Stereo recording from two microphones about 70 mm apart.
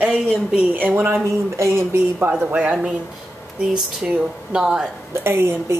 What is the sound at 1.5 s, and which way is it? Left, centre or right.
Speech, right.